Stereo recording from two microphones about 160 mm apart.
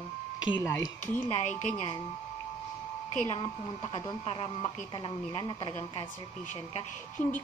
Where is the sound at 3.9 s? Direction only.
30° left (ahead or behind).